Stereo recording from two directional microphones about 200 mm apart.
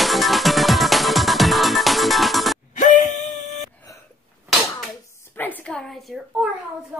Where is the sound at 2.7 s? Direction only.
40° left (ahead or behind).